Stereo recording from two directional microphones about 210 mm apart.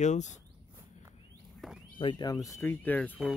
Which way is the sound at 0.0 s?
35° left (ahead or behind).